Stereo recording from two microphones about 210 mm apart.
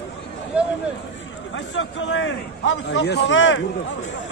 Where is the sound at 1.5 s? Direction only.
65° left (ahead or behind).